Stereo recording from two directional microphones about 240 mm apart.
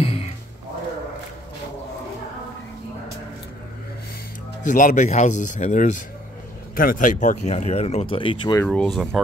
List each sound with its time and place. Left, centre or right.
4.6 s speech: left
8.6 s speech: centre